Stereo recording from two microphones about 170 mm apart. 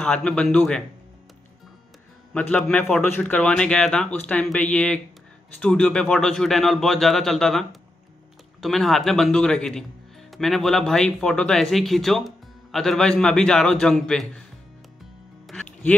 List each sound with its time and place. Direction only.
0.0 s speech: 5° left (ahead or behind)
2.3 s speech: 10° left (ahead or behind)
15.4 s music: 10° left (ahead or behind)